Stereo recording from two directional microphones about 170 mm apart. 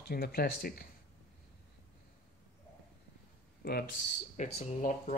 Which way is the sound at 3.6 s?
70° left (ahead or behind).